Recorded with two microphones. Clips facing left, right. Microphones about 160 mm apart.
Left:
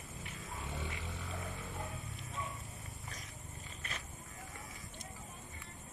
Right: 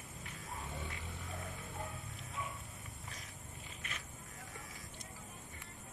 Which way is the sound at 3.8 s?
35° left (ahead or behind).